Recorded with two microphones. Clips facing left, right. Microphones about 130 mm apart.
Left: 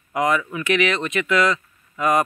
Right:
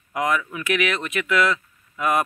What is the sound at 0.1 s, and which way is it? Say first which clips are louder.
Speech: left 3 dB; centre (ahead or behind).